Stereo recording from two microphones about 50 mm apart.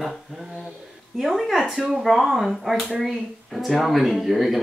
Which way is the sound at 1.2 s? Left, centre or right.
Centre.